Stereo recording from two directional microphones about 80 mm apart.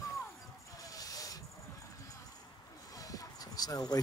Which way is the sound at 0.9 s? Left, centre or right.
Left.